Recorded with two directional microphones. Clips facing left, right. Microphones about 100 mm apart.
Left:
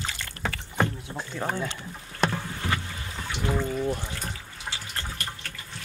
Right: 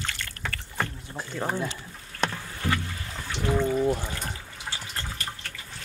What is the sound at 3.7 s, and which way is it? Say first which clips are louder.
Speech: right 4 dB; 10° right (ahead or behind).